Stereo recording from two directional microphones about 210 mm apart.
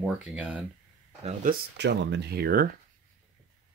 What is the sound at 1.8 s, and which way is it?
Speech, 55° right (ahead or behind).